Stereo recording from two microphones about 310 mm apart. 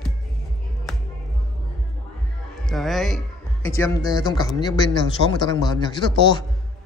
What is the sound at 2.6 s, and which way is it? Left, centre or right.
A man's voice, centre.